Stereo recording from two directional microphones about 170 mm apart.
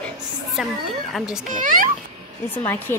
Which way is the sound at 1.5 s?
50° right (ahead or behind).